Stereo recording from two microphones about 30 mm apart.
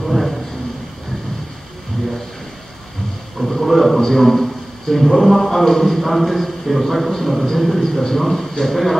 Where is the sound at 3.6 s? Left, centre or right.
Centre.